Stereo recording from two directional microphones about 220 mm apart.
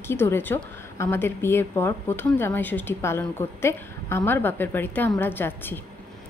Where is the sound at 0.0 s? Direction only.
10° left (ahead or behind).